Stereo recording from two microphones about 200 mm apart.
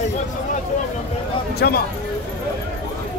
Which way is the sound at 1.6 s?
55° left (ahead or behind).